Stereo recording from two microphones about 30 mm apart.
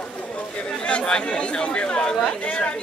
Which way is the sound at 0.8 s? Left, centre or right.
Left.